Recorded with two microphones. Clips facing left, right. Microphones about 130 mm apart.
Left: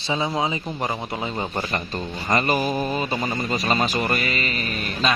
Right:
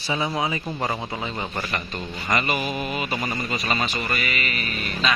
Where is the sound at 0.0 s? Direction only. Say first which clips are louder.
Left 1 dB; 20° left (ahead or behind).